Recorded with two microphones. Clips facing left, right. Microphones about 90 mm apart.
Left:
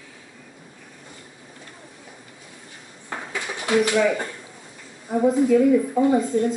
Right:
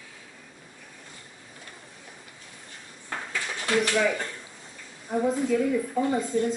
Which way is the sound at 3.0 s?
20° left (ahead or behind).